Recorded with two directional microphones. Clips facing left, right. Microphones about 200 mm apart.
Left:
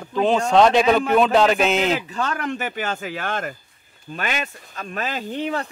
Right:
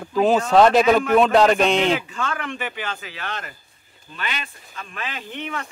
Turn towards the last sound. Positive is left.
turn(degrees=35)  # may be behind; listen again after turning